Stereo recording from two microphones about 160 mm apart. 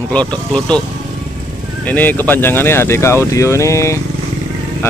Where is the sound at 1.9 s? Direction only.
10° left (ahead or behind).